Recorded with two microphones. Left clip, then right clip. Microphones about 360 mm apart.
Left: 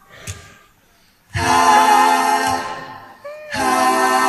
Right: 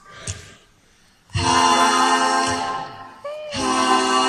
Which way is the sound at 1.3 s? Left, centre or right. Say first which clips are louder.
Left 4 dB; centre.